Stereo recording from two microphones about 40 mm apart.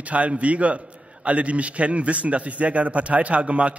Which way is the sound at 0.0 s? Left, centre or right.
Right.